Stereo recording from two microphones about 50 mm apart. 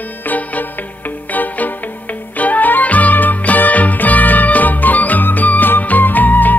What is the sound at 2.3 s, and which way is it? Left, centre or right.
Music, left.